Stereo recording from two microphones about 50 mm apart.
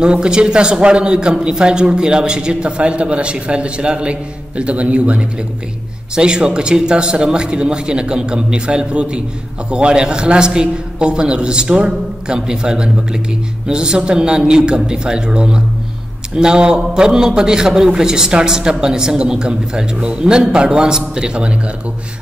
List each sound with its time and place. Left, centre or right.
0.0 s a man's voice: centre